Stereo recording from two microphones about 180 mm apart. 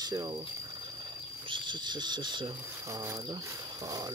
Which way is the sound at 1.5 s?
25° right (ahead or behind).